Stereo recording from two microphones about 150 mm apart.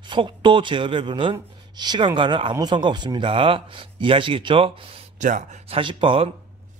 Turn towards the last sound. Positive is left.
turn(degrees=-35)  # may be behind; listen again after turning